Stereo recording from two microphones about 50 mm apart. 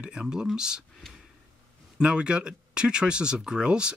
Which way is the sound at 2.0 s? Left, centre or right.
Centre.